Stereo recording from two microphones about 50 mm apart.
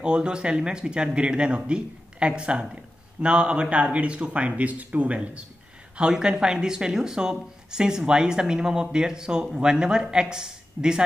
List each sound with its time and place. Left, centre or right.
0.0 s speech: centre